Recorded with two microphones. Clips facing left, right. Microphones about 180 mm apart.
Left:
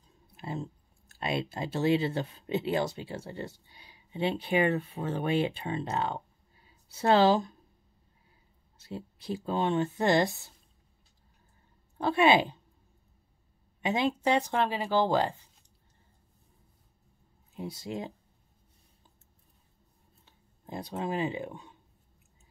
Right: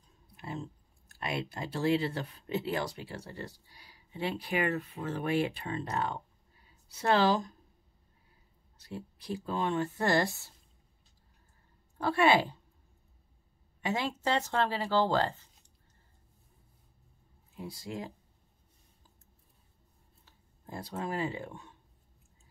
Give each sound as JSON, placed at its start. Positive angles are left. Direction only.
{"t": 0.4, "sound": "speech", "side_deg": 25}
{"t": 8.7, "sound": "speech", "side_deg": 25}
{"t": 12.0, "sound": "speech", "side_deg": 20}
{"t": 13.7, "sound": "speech", "side_deg": 20}
{"t": 17.6, "sound": "speech", "side_deg": 25}
{"t": 20.2, "sound": "speech", "side_deg": 20}